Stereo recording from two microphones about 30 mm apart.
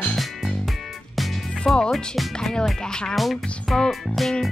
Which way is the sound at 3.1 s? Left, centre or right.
Centre.